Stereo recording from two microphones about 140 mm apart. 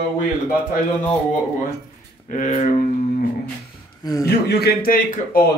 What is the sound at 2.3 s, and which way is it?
Speech, 60° left (ahead or behind).